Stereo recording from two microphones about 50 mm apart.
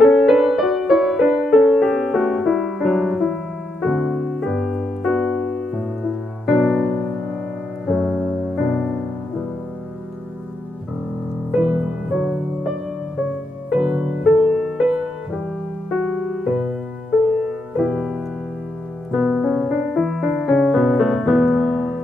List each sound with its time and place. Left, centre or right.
0.0 s music: centre
6.4 s music: centre
7.9 s music: centre
11.5 s music: centre
13.7 s music: centre
19.1 s music: centre